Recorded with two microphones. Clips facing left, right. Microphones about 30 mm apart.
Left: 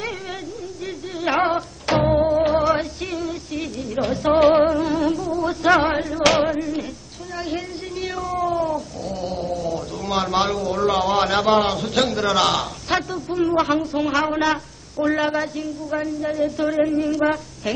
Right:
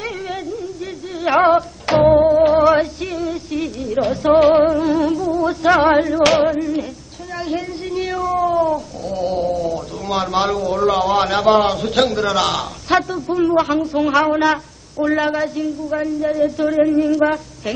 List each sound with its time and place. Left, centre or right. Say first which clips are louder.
1.2 s music: right 7 dB; centre
5.9 s music: right 8 dB; centre
6.2 s a man's voice: right 4 dB; centre
7.4 s cat: right 6 dB; centre
9.7 s a man's voice: right 3 dB; centre